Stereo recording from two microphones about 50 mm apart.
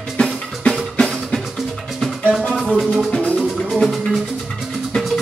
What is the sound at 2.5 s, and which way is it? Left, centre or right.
Music, centre.